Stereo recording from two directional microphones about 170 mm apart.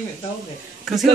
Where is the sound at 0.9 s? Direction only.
Centre (ahead or behind).